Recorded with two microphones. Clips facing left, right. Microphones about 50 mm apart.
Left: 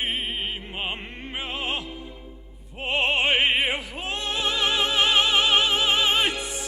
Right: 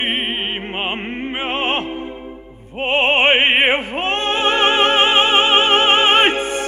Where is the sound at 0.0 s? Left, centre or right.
Right.